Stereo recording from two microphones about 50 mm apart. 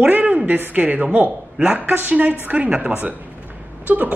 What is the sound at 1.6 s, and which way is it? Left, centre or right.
Speech, centre.